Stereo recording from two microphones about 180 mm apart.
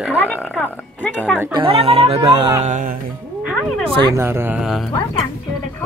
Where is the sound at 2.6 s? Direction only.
45° right (ahead or behind).